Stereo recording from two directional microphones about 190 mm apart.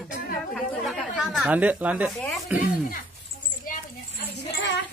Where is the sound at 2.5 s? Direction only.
10° right (ahead or behind).